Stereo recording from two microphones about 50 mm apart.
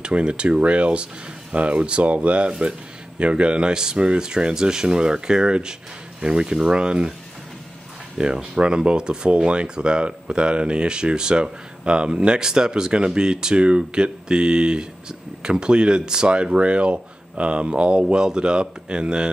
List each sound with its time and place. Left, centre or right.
0.0 s speech: centre
8.2 s speech: centre